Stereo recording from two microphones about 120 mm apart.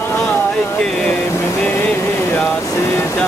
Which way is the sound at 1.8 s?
15° left (ahead or behind).